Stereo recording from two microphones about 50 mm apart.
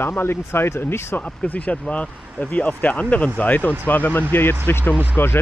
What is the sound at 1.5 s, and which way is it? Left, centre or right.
Speech, left.